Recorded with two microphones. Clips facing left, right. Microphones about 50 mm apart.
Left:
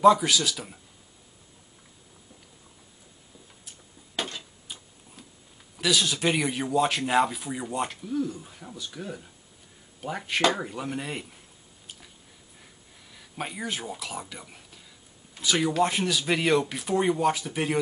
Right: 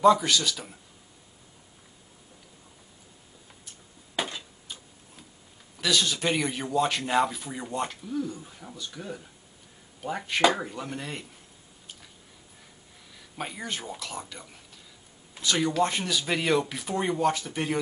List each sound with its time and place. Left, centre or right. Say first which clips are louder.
0.0 s speech: left 1 dB; centre
4.1 s tick-tock: right 1 dB; centre
4.4 s tick-tock: even; centre
5.8 s speech: left 1 dB; centre
13.1 s speech: left 1 dB; centre